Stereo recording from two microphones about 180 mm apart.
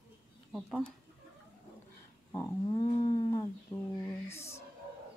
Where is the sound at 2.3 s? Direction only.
20° left (ahead or behind).